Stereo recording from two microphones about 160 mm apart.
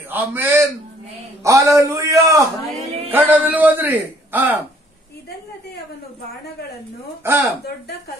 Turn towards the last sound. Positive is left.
turn(degrees=-15)  # may be behind; listen again after turning